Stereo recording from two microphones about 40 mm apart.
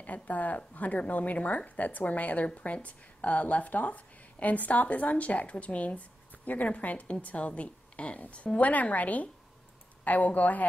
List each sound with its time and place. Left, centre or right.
0.0 s a woman's voice: left